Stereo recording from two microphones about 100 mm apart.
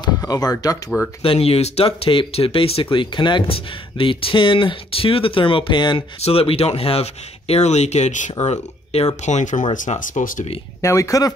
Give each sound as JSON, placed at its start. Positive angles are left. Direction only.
{"t": 0.2, "sound": "speech", "side_deg": 40}
{"t": 0.8, "sound": "speech", "side_deg": 5}
{"t": 1.2, "sound": "speech", "side_deg": 70}
{"t": 3.5, "sound": "speech", "side_deg": 60}
{"t": 6.2, "sound": "speech", "side_deg": 75}
{"t": 10.8, "sound": "speech", "side_deg": 30}